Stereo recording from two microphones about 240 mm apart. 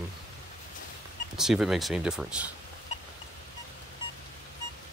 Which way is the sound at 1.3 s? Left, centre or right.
Centre.